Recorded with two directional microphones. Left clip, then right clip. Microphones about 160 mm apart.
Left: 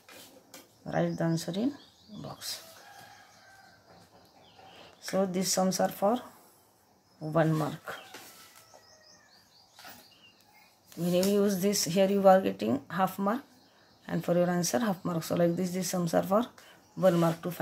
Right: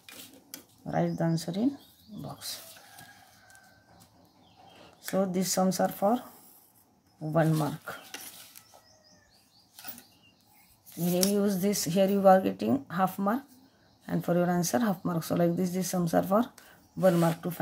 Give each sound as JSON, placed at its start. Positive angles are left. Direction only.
{"t": 0.8, "sound": "speech", "side_deg": -20}
{"t": 5.0, "sound": "speech", "side_deg": -25}
{"t": 7.3, "sound": "speech", "side_deg": -25}
{"t": 11.3, "sound": "speech", "side_deg": -20}